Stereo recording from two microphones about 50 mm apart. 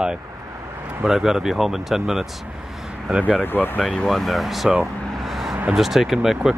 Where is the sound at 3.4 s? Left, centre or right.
Left.